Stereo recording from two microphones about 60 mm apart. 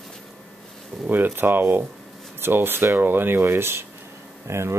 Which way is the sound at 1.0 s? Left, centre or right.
Right.